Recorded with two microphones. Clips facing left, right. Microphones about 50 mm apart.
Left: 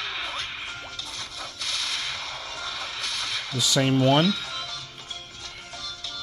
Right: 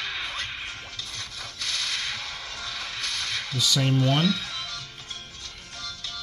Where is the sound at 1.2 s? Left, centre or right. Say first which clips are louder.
Left 1 dB; centre.